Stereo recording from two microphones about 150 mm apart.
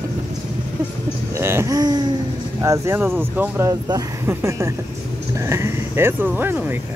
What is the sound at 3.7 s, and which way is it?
Speech, 25° right (ahead or behind).